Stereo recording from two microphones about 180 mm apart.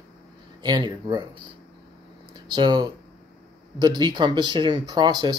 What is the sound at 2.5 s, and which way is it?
Speech, 25° right (ahead or behind).